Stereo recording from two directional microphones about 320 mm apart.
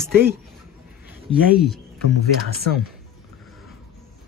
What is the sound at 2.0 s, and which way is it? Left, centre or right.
Speech, right.